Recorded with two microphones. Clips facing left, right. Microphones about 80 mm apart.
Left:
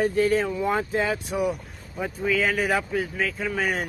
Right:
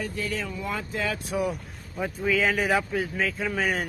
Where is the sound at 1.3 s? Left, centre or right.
Centre.